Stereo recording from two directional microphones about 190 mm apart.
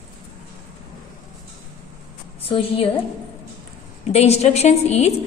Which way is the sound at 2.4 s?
30° left (ahead or behind).